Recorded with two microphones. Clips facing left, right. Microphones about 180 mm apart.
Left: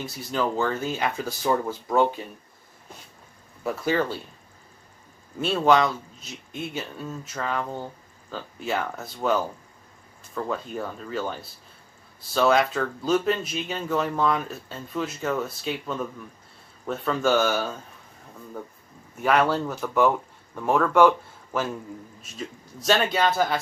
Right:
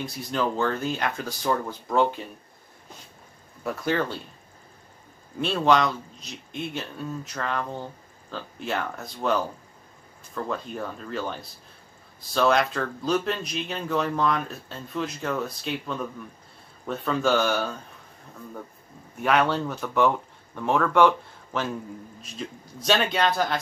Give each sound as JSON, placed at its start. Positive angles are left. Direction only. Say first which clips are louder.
{"t": 0.3, "sound": "speech", "louder": "left 1 dB", "side_deg": 5}
{"t": 3.6, "sound": "speech", "louder": "left 2 dB", "side_deg": 5}
{"t": 5.4, "sound": "speech", "louder": "left 1 dB", "side_deg": 5}
{"t": 19.2, "sound": "speech", "louder": "left 1 dB", "side_deg": 0}
{"t": 22.2, "sound": "speech", "louder": "right 1 dB", "side_deg": 0}